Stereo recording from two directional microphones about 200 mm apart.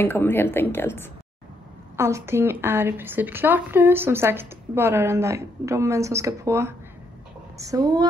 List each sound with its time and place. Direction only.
0.0 s a woman's voice: 10° left (ahead or behind)
2.0 s a woman's voice: 15° right (ahead or behind)